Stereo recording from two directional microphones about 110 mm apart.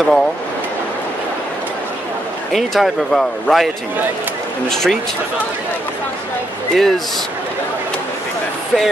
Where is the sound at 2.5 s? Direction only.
Centre (ahead or behind).